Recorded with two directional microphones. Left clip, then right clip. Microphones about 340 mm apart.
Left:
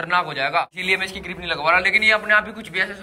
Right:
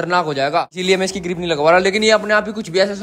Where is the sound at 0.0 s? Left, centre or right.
Centre.